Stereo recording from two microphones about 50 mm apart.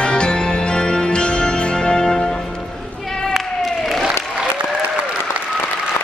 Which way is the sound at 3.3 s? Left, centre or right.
Centre.